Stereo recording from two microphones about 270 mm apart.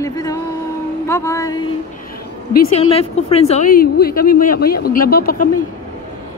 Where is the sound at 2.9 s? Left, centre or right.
Left.